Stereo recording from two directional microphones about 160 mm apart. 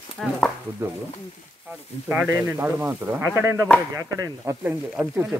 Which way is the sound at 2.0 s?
15° right (ahead or behind).